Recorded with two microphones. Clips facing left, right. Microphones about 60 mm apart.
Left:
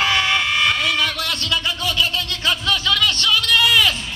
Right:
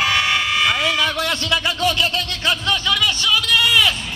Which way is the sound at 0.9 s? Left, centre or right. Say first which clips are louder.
Right 2 dB; right.